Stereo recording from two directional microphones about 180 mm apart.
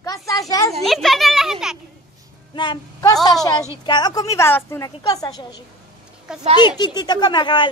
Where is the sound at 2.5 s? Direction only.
25° left (ahead or behind).